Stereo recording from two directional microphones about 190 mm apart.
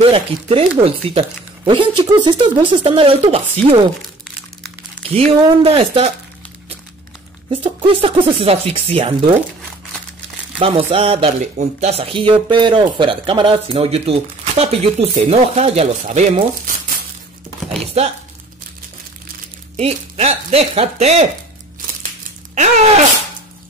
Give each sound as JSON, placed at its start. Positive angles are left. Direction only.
{"t": 0.0, "sound": "speech", "side_deg": -30}
{"t": 5.0, "sound": "speech", "side_deg": -30}
{"t": 7.4, "sound": "speech", "side_deg": -25}
{"t": 10.6, "sound": "speech", "side_deg": -30}
{"t": 19.8, "sound": "speech", "side_deg": -35}